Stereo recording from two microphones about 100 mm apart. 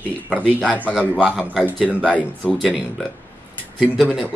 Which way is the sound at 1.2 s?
5° right (ahead or behind).